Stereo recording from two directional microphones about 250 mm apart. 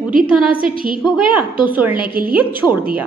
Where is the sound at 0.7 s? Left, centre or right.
Right.